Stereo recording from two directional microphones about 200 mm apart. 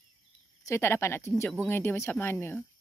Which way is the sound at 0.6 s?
15° left (ahead or behind).